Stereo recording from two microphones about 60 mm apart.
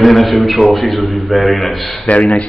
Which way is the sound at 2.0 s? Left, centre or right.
Left.